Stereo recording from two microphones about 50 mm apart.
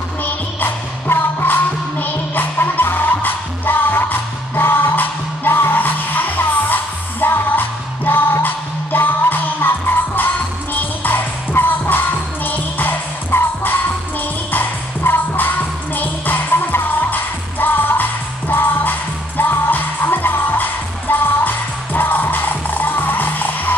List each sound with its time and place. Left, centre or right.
0.2 s music: left